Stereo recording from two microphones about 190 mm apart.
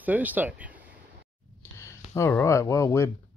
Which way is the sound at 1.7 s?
15° left (ahead or behind).